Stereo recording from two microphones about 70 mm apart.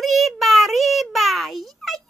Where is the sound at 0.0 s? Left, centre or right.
Centre.